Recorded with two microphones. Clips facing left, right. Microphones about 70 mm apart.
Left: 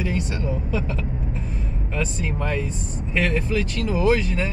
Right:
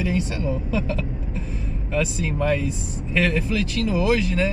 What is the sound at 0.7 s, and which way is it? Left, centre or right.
Speech, left.